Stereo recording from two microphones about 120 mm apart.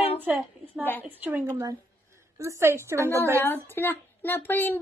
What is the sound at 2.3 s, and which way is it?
Speech, 25° right (ahead or behind).